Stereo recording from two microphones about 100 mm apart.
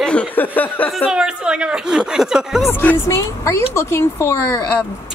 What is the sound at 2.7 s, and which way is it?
A woman's voice, 20° left (ahead or behind).